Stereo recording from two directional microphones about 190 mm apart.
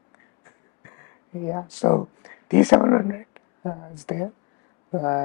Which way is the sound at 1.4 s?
25° left (ahead or behind).